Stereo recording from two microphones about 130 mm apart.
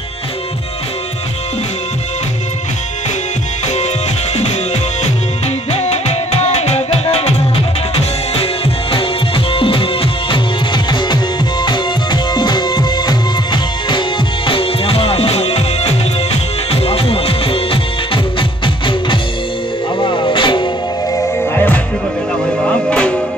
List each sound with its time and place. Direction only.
5.7 s music: 55° left (ahead or behind)
8.9 s music: 45° left (ahead or behind)
20.0 s music: 40° left (ahead or behind)
22.8 s music: 10° left (ahead or behind)